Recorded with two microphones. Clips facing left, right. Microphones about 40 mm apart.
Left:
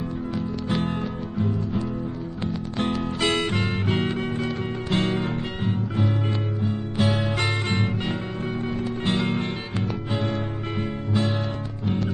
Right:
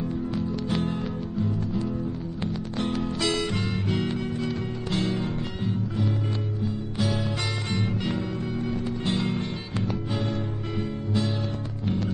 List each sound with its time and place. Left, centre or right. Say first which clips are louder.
0.7 s music: left 2 dB; left
10.8 s music: left 2 dB; left